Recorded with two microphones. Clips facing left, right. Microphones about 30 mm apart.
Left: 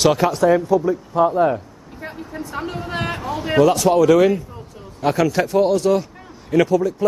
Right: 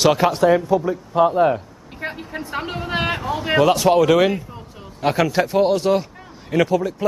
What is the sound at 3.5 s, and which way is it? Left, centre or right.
A man's voice, right.